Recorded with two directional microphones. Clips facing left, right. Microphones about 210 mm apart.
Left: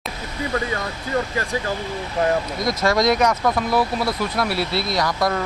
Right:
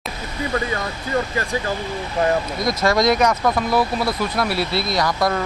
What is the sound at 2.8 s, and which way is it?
Speech, 20° right (ahead or behind).